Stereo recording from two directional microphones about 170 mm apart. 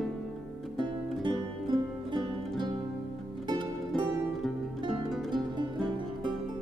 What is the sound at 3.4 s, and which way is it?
Music, 25° right (ahead or behind).